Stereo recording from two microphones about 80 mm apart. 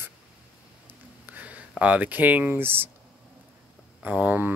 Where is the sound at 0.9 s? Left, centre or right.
Centre.